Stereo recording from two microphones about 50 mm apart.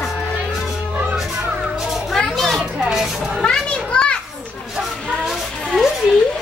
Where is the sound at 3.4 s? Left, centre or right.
Centre.